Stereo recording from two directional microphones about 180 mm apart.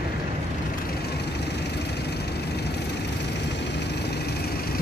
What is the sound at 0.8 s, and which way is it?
Vehicle, 65° left (ahead or behind).